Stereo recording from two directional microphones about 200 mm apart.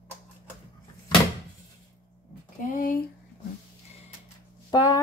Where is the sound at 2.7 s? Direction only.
45° left (ahead or behind).